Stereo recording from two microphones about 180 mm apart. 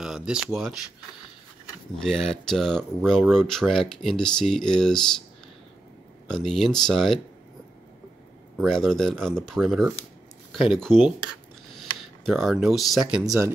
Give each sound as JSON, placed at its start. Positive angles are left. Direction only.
{"t": 0.0, "sound": "a sound", "side_deg": -5}
{"t": 2.0, "sound": "speech", "side_deg": 5}
{"t": 6.2, "sound": "speech", "side_deg": 0}
{"t": 8.5, "sound": "speech", "side_deg": 5}
{"t": 12.3, "sound": "speech", "side_deg": 0}
{"t": 13.2, "sound": "speech", "side_deg": -15}